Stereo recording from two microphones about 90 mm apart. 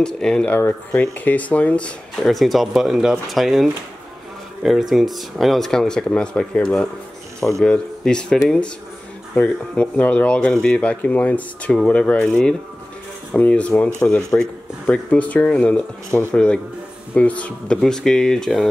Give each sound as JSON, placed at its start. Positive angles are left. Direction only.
{"t": 0.0, "sound": "speech", "side_deg": 10}
{"t": 0.6, "sound": "speech", "side_deg": 25}
{"t": 2.2, "sound": "speech", "side_deg": 0}
{"t": 4.6, "sound": "speech", "side_deg": 0}
{"t": 9.4, "sound": "speech", "side_deg": 15}